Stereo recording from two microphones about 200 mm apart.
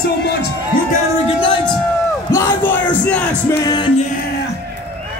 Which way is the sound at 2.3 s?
15° left (ahead or behind).